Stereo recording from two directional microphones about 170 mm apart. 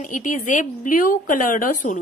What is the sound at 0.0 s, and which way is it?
A woman's voice, 50° left (ahead or behind).